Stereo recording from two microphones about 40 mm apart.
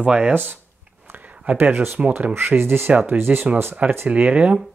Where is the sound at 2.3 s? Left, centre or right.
Right.